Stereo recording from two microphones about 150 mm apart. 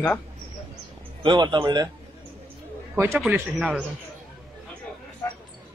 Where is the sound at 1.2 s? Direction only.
30° right (ahead or behind).